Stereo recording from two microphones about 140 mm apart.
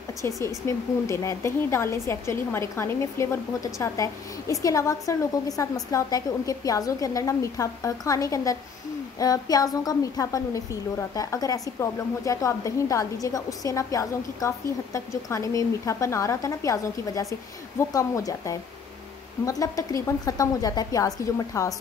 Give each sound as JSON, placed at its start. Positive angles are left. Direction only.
{"t": 0.2, "sound": "a woman's voice", "side_deg": 20}